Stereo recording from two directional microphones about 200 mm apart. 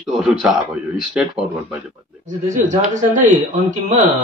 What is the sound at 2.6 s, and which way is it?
Speech, 40° right (ahead or behind).